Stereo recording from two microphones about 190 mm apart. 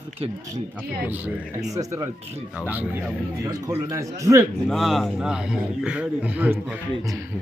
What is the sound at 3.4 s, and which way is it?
Speech, 15° right (ahead or behind).